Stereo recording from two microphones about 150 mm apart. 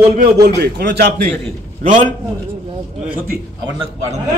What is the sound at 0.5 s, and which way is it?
Speech, 90° right.